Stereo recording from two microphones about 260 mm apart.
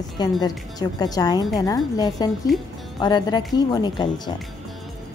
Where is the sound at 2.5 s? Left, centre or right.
Centre.